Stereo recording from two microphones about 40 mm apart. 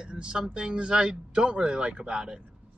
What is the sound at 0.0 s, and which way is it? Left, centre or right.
Speech, right.